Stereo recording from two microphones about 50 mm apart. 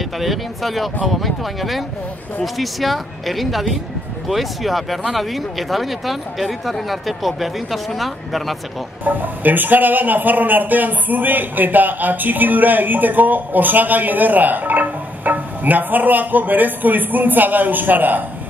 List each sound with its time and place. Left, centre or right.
0.0 s speech: centre
9.0 s speech: right